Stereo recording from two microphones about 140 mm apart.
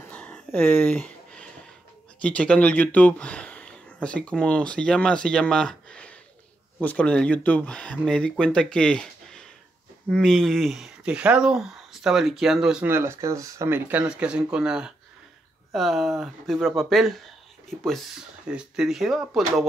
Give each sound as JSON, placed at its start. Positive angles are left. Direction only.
{"t": 0.0, "sound": "a sound", "side_deg": 10}
{"t": 2.2, "sound": "speech", "side_deg": 10}
{"t": 12.8, "sound": "speech", "side_deg": -15}